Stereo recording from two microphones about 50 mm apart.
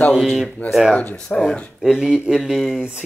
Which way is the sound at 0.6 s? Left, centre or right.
Left.